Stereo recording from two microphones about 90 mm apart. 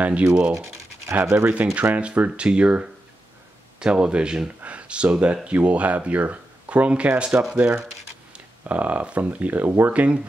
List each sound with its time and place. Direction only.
0.0 s speech: 15° right (ahead or behind)